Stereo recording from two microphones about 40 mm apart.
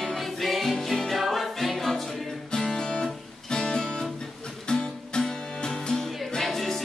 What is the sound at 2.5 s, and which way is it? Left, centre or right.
Music, centre.